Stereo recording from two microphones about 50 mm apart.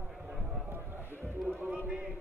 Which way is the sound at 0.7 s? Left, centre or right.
Right.